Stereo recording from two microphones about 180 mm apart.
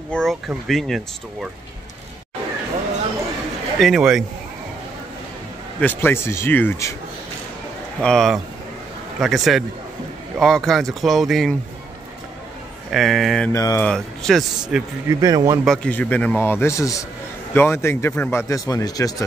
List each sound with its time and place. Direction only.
0.1 s speech: centre (ahead or behind)
3.8 s speech: centre (ahead or behind)
5.8 s speech: 10° left (ahead or behind)
8.0 s speech: centre (ahead or behind)
12.9 s speech: centre (ahead or behind)
13.5 s speech: 15° left (ahead or behind)
13.8 s speech: centre (ahead or behind)
15.0 s speech: 20° right (ahead or behind)
15.6 s speech: 5° left (ahead or behind); by 19.2 s 20° left (ahead or behind)